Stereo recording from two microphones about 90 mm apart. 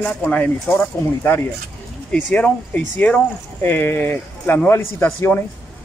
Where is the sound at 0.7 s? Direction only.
25° left (ahead or behind).